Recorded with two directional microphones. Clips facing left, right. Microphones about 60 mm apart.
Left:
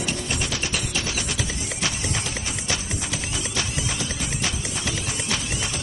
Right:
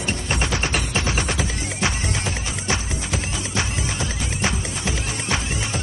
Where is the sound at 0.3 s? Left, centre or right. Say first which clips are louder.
Right 4 dB; right.